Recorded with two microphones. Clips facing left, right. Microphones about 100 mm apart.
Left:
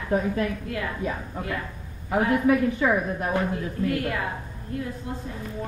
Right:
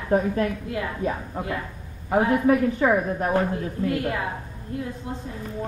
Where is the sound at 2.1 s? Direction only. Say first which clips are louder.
Right 2 dB; 30° right (ahead or behind).